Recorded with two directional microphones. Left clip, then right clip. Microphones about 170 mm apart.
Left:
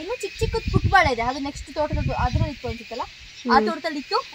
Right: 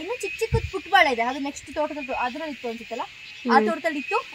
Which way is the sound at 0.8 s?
20° right (ahead or behind).